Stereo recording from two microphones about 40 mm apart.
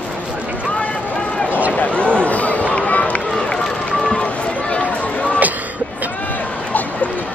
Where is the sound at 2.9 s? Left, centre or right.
Left.